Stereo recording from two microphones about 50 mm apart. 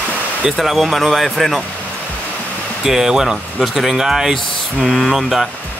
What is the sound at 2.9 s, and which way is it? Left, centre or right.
Speech, centre.